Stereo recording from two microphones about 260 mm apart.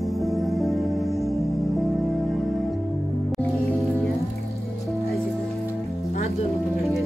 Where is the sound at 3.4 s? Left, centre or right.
Centre.